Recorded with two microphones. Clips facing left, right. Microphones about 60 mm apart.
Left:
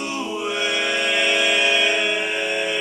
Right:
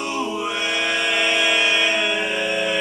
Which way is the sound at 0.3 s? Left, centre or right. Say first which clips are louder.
Even; centre.